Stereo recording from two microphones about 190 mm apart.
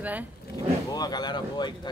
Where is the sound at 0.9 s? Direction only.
20° left (ahead or behind).